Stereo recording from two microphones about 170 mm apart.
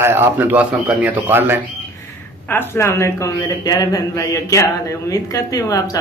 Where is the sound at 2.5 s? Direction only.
15° left (ahead or behind).